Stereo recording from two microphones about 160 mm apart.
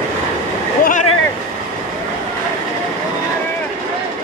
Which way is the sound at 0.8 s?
55° left (ahead or behind).